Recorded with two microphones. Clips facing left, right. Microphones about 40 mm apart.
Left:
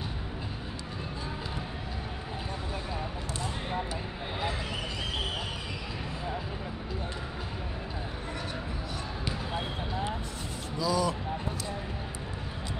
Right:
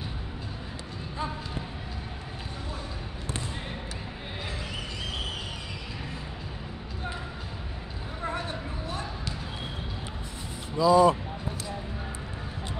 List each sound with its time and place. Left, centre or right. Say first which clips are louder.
10.8 s speech: right 9 dB; right